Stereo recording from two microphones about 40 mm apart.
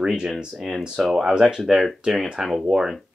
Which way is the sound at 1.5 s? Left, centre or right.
Centre.